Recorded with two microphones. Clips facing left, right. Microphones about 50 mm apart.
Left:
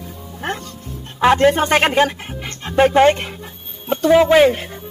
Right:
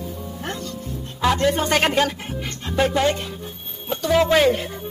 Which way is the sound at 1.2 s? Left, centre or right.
Left.